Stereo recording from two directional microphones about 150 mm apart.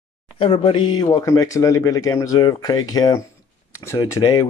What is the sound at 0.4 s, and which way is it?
Speech, 40° left (ahead or behind).